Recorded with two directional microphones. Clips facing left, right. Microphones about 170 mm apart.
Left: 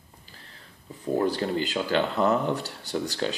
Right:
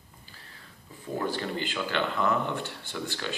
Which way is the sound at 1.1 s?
40° left (ahead or behind).